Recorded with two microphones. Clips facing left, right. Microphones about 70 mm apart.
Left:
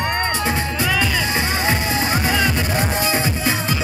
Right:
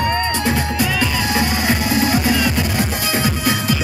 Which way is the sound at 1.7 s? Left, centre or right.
Left.